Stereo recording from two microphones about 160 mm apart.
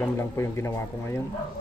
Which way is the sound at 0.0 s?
15° left (ahead or behind).